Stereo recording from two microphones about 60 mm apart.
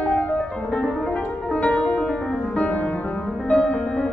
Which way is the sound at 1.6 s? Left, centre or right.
Left.